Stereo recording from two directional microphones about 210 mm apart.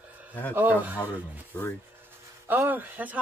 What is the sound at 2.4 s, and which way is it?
Speech, 10° right (ahead or behind).